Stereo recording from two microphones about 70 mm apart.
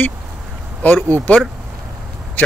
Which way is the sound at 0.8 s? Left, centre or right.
Left.